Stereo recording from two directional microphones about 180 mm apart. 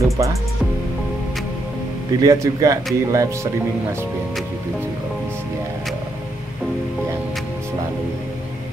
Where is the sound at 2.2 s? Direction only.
20° right (ahead or behind).